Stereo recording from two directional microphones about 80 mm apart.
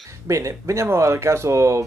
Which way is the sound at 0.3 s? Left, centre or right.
Right.